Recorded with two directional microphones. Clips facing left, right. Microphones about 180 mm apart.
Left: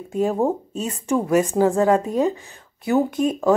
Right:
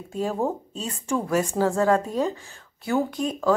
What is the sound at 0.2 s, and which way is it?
Speech, 20° left (ahead or behind).